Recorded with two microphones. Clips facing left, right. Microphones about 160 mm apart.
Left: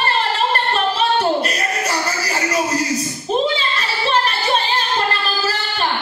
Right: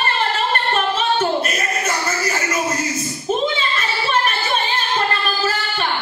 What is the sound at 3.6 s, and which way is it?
Child singing, 30° left (ahead or behind).